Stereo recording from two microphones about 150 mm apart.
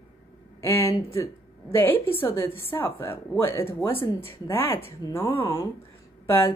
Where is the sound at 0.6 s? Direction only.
15° left (ahead or behind).